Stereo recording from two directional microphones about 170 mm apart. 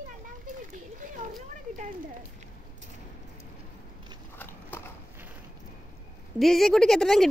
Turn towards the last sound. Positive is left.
turn(degrees=0)  # may be behind; listen again after turning